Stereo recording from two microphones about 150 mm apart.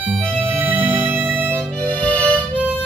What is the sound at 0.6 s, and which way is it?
Music, 10° right (ahead or behind).